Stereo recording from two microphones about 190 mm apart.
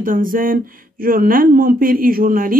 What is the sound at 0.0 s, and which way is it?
Speech, 45° right (ahead or behind).